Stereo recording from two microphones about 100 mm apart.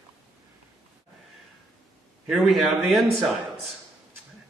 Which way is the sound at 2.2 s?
Centre (ahead or behind).